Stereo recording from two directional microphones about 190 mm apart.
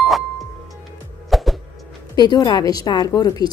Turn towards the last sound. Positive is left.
turn(degrees=20)  # may be behind; listen again after turning